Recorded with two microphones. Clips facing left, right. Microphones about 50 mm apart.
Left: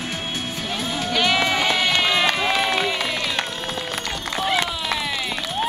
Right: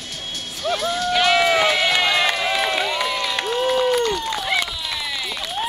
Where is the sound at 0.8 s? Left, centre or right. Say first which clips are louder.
Right 3 dB; left.